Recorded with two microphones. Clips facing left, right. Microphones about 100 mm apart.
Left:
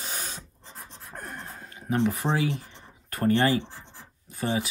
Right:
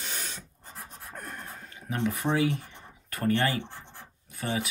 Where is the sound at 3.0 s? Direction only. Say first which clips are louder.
Left 3 dB; 35° left (ahead or behind).